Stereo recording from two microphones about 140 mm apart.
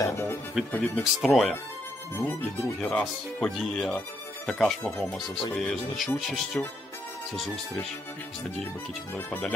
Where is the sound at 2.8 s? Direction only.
5° left (ahead or behind).